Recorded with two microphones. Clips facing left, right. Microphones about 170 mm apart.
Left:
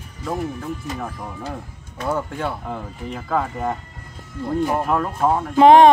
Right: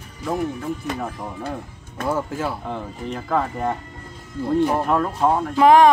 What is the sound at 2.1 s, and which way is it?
Speech, 5° right (ahead or behind).